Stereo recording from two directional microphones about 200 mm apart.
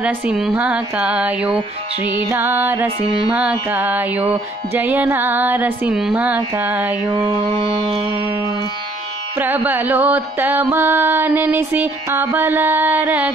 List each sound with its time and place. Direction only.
0.0 s speech: 5° right (ahead or behind)
2.2 s music: 10° right (ahead or behind)
7.1 s music: 25° right (ahead or behind)
9.4 s music: 10° right (ahead or behind)